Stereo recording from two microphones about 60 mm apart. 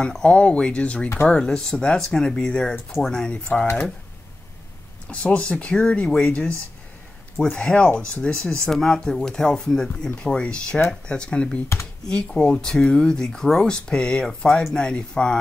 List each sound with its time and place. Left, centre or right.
0.0 s speech: centre
5.0 s speech: centre